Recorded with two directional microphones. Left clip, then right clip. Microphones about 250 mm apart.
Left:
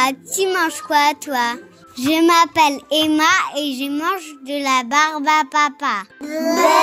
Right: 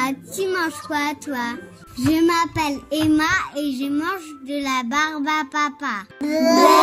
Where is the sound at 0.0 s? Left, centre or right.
Left.